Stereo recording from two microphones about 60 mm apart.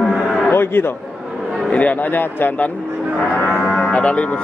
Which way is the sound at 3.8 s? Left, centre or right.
Centre.